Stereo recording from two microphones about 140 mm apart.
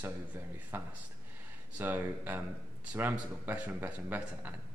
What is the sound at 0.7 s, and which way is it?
Speech, 15° right (ahead or behind).